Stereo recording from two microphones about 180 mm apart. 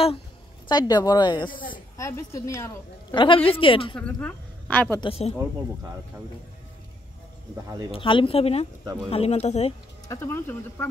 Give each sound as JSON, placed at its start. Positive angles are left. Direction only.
{"t": 0.7, "sound": "a woman's voice", "side_deg": 20}
{"t": 3.9, "sound": "a woman's voice", "side_deg": 5}
{"t": 5.0, "sound": "speech", "side_deg": 35}
{"t": 7.9, "sound": "speech", "side_deg": 30}
{"t": 10.0, "sound": "speech", "side_deg": 15}